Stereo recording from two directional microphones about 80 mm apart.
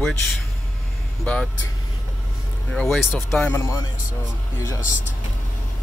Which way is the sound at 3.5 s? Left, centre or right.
Left.